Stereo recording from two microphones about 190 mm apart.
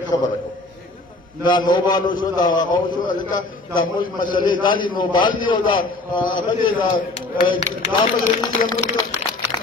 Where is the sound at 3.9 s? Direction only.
45° left (ahead or behind).